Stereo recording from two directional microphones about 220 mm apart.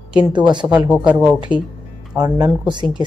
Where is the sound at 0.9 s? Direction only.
5° right (ahead or behind).